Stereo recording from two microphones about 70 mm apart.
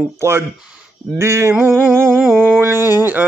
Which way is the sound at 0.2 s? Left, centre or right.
Right.